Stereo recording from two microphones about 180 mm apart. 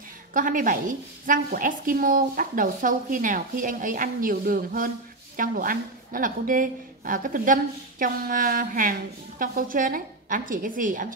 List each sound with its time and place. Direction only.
0.3 s a woman's voice: 50° right (ahead or behind)